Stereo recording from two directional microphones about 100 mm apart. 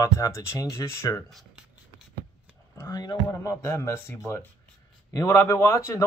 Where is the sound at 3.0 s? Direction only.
45° left (ahead or behind).